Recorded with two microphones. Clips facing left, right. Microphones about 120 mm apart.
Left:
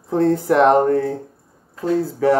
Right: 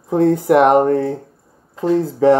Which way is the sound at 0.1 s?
15° right (ahead or behind).